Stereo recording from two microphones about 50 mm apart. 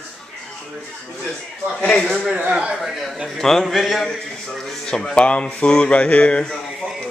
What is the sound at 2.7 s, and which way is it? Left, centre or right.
Speech, centre.